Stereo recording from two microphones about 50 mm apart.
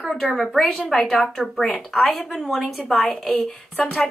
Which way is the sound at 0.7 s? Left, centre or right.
Centre.